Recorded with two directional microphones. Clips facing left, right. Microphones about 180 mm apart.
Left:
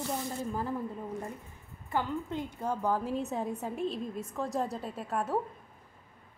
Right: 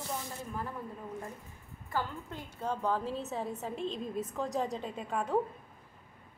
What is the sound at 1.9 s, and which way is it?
A woman's voice, 20° left (ahead or behind).